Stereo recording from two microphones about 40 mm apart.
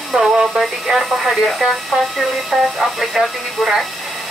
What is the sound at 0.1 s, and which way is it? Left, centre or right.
Speech, centre.